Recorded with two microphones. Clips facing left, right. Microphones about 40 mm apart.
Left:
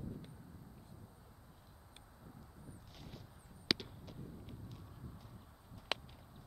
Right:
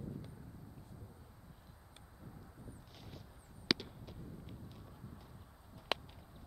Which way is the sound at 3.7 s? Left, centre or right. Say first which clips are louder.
Right 2 dB; centre.